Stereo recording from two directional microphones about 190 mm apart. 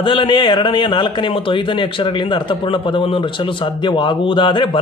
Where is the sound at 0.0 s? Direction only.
25° left (ahead or behind).